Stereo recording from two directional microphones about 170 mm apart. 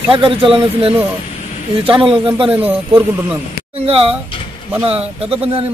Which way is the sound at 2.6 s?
10° right (ahead or behind).